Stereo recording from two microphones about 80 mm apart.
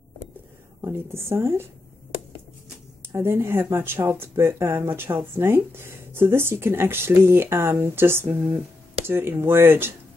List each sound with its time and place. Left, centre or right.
0.9 s speech: right
3.2 s speech: right